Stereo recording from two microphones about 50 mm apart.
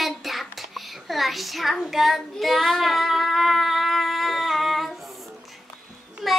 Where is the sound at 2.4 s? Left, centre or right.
Centre.